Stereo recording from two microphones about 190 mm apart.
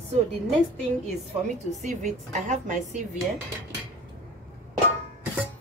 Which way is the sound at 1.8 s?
40° right (ahead or behind).